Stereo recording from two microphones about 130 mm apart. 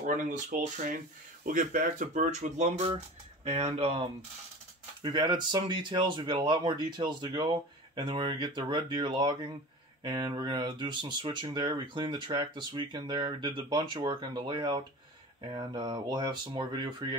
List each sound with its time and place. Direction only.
0.0 s speech: 80° right; by 4.1 s 50° right (ahead or behind)
5.0 s speech: 35° right (ahead or behind)